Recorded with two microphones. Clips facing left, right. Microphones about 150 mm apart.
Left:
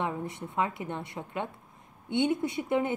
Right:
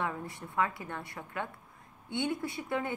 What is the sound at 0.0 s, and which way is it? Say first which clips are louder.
A woman's voice: left 3 dB; 20° left (ahead or behind).